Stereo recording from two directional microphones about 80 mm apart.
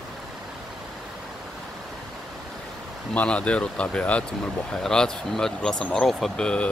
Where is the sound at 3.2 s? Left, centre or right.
Centre.